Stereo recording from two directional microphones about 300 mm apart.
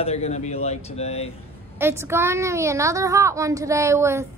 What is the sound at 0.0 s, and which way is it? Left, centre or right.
Speech, left.